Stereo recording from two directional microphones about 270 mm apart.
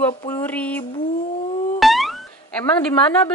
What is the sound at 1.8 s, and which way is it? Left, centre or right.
Music, centre.